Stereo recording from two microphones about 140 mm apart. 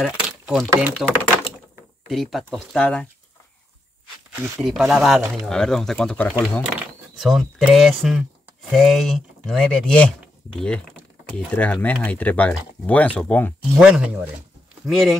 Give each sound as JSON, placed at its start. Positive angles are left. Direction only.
{"t": 0.5, "sound": "speech", "side_deg": -5}
{"t": 0.9, "sound": "speech", "side_deg": 5}
{"t": 4.4, "sound": "speech", "side_deg": -5}
{"t": 11.2, "sound": "speech", "side_deg": 10}
{"t": 13.7, "sound": "speech", "side_deg": -5}